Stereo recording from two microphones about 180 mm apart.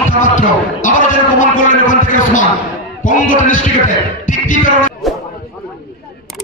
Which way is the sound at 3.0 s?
45° left (ahead or behind).